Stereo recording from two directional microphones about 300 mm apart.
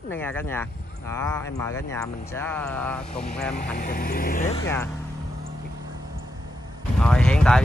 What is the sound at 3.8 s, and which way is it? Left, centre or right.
Speech, left.